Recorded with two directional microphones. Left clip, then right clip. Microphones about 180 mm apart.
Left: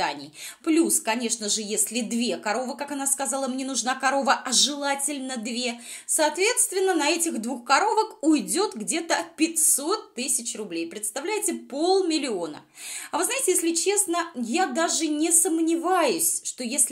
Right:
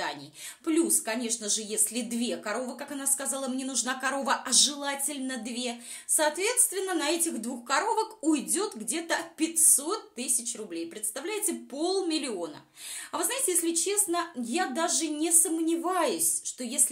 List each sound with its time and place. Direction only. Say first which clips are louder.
0.7 s a woman's voice: left 5 dB; 30° left (ahead or behind)